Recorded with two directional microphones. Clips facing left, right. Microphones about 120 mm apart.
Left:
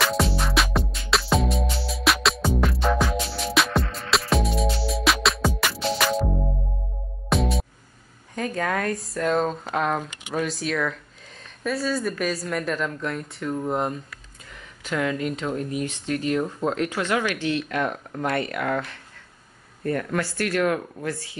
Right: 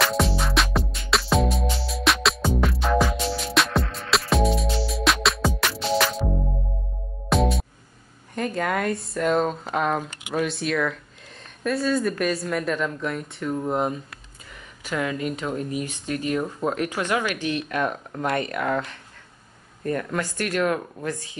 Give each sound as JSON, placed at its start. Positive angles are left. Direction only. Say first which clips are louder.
{"t": 0.0, "sound": "music", "louder": "right 1 dB", "side_deg": 0}
{"t": 7.2, "sound": "music", "louder": "right 2 dB", "side_deg": 0}
{"t": 8.4, "sound": "speech", "louder": "right 1 dB", "side_deg": 0}